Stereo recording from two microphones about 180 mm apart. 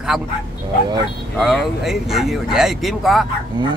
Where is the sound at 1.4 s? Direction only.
Centre (ahead or behind).